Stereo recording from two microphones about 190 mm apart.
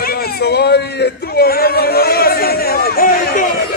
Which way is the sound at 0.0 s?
55° left (ahead or behind).